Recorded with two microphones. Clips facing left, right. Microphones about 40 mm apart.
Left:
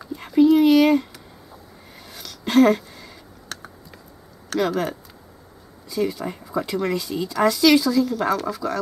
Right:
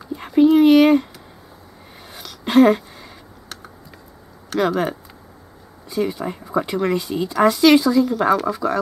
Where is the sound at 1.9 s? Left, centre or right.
Centre.